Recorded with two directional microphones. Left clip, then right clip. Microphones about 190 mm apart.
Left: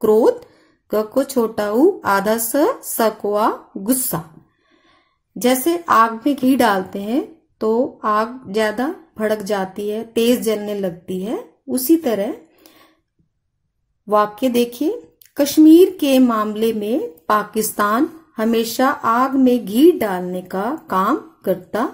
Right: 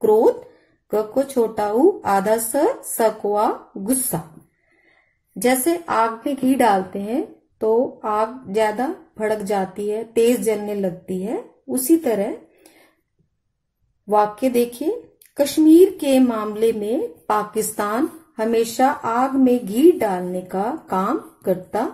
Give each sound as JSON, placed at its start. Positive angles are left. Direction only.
{"t": 0.8, "sound": "a woman's voice", "side_deg": 45}
{"t": 5.4, "sound": "a woman's voice", "side_deg": 45}
{"t": 14.0, "sound": "a woman's voice", "side_deg": 50}